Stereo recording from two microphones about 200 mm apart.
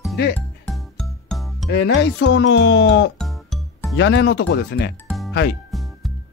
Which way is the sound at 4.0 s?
60° left (ahead or behind).